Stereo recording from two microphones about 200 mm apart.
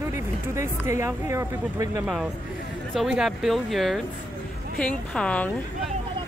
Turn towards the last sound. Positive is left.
turn(degrees=5)  # may be behind; listen again after turning